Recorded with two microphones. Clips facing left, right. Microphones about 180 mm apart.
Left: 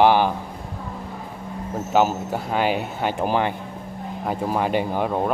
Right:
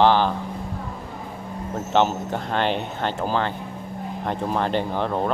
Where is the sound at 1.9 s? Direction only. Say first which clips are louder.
Left 1 dB; 5° left (ahead or behind).